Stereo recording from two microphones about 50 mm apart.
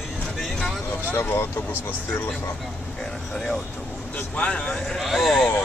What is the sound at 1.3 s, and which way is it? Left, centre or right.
Speech, left.